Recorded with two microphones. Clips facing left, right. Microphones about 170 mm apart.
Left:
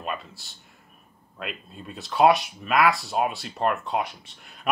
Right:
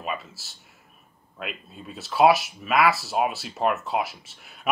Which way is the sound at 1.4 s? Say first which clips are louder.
Even; centre (ahead or behind).